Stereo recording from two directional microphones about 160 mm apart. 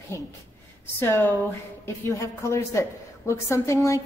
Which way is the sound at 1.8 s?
20° left (ahead or behind).